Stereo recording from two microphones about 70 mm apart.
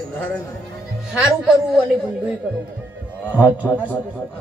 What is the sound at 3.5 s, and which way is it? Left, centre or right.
Speech, right.